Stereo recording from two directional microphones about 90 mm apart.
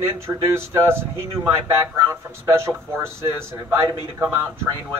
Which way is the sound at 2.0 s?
30° right (ahead or behind).